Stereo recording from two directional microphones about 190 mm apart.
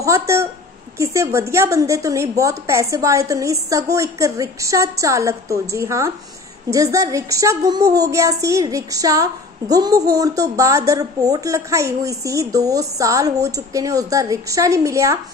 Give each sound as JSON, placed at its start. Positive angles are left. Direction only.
{"t": 0.0, "sound": "a woman's voice", "side_deg": -15}